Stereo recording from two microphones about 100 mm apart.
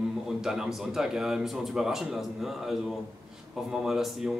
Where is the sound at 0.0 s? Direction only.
5° right (ahead or behind).